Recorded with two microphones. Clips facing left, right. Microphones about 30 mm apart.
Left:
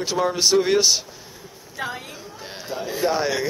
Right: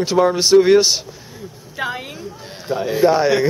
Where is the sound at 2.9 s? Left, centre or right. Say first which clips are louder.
Right 8 dB; centre.